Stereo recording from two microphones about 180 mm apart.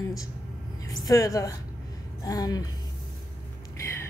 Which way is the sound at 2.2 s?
20° left (ahead or behind).